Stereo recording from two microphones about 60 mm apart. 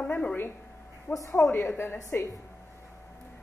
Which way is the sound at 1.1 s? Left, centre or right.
Left.